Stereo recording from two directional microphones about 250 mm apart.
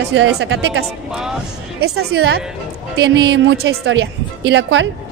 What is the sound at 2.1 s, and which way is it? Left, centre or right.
A woman's voice, right.